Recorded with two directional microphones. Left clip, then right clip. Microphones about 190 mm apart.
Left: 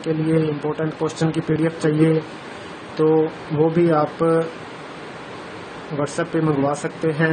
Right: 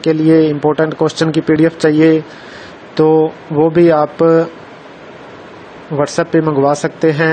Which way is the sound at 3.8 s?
40° right (ahead or behind).